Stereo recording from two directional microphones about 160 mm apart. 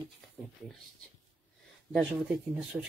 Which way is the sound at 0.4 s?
10° right (ahead or behind).